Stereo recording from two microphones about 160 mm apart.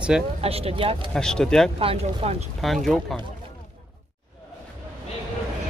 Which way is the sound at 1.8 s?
40° right (ahead or behind).